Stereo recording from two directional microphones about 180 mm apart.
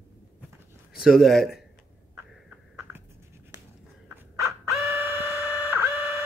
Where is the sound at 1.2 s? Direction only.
Centre (ahead or behind).